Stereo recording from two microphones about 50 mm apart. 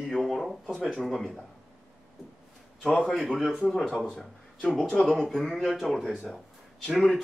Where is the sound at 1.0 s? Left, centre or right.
Centre.